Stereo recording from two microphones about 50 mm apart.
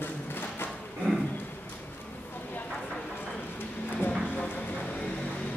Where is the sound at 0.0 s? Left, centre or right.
Left.